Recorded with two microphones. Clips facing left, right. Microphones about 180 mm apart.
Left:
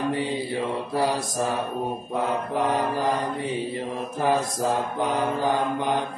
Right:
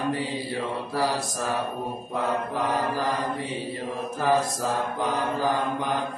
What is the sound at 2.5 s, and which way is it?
Mantra, 20° left (ahead or behind).